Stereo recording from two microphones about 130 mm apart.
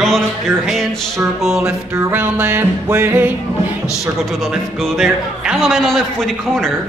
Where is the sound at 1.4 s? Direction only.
5° right (ahead or behind).